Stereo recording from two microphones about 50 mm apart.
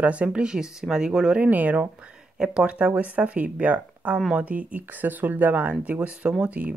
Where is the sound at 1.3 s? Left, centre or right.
Right.